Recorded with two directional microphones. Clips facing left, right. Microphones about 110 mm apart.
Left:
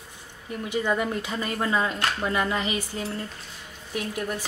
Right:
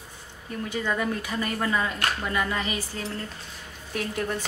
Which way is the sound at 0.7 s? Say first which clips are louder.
Left 2 dB; 20° left (ahead or behind).